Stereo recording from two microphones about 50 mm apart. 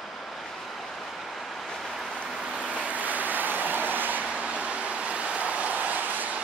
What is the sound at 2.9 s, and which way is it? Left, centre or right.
Vehicle, right.